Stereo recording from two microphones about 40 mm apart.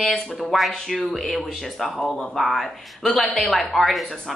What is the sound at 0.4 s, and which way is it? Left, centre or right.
Speech, centre.